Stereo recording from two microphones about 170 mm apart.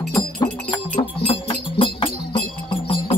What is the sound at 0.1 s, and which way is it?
Music, 25° left (ahead or behind).